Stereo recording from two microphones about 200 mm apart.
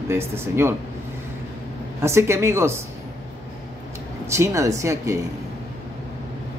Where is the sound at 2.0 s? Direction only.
15° right (ahead or behind).